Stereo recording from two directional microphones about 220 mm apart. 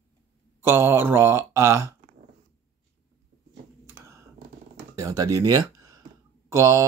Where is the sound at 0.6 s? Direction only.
10° right (ahead or behind).